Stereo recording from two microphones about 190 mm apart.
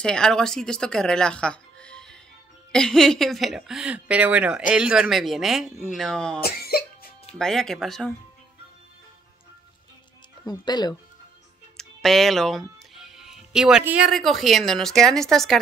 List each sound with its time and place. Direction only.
0.0 s a woman's voice: 5° left (ahead or behind)
6.4 s cough: 55° left (ahead or behind)
7.3 s speech: 5° left (ahead or behind)
10.4 s speech: 20° left (ahead or behind)
11.7 s speech: centre (ahead or behind)